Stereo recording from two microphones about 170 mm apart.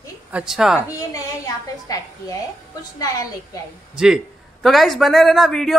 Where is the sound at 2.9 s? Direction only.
20° left (ahead or behind).